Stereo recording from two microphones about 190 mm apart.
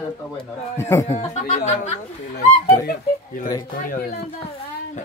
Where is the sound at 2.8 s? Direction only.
50° left (ahead or behind).